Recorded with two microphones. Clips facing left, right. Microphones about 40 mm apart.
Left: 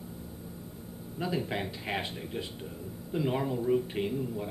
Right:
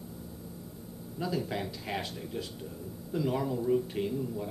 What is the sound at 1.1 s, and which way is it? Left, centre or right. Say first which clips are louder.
A man's voice: left 1 dB; left.